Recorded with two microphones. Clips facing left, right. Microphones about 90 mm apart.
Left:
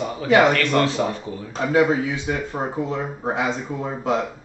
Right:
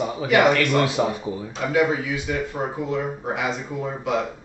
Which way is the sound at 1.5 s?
35° left (ahead or behind).